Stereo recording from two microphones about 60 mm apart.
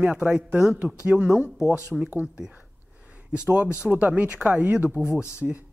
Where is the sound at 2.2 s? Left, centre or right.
Centre.